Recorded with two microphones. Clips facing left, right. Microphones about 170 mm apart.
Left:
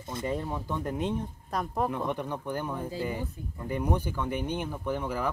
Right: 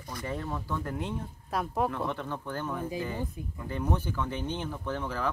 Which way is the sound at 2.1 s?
15° left (ahead or behind).